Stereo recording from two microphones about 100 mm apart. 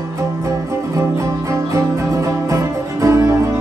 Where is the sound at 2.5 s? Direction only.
30° right (ahead or behind).